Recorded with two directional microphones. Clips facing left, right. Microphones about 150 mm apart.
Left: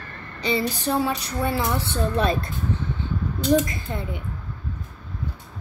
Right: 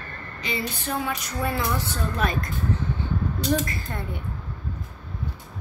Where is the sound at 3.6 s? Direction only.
20° left (ahead or behind).